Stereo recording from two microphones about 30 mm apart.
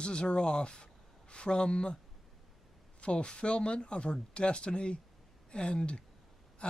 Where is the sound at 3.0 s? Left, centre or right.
Left.